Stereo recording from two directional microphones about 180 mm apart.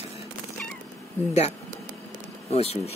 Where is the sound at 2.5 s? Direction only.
35° left (ahead or behind).